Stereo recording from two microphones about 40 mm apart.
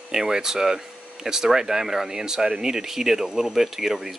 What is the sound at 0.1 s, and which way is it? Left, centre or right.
Speech, centre.